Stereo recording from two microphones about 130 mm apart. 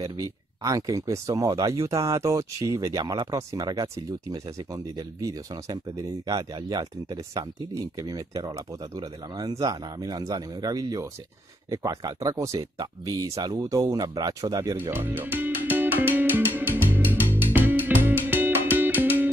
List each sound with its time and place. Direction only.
0.0 s speech: 25° right (ahead or behind)
14.9 s music: 15° right (ahead or behind)